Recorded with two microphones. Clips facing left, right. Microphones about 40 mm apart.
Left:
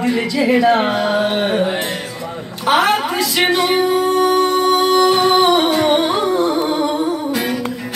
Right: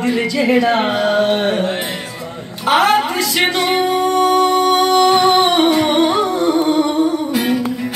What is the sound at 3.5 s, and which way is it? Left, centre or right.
Music, right.